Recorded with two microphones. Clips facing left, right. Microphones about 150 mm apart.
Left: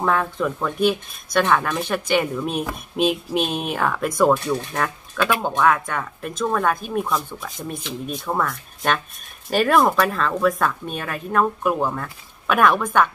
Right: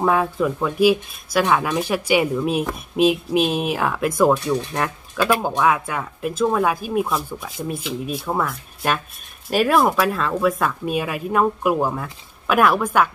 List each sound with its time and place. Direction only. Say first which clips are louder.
0.0 s speech: right 2 dB; 10° right (ahead or behind)